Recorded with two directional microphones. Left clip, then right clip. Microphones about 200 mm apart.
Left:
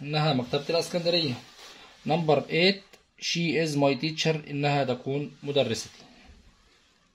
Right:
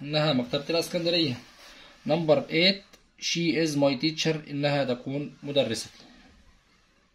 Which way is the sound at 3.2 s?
25° left (ahead or behind).